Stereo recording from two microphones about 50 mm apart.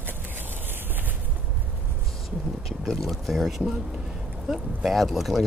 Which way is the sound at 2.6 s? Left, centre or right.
Centre.